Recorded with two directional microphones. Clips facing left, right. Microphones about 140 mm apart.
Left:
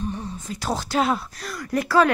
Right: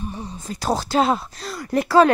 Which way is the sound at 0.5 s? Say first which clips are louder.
Right 5 dB; 35° right (ahead or behind).